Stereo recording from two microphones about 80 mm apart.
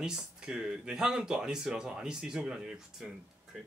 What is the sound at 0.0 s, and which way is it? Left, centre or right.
Speech, centre.